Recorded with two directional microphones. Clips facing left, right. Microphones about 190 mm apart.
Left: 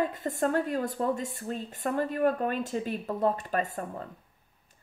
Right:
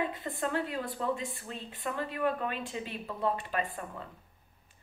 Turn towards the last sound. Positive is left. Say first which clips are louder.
# left 4 dB
turn(degrees=45)  # may be behind; listen again after turning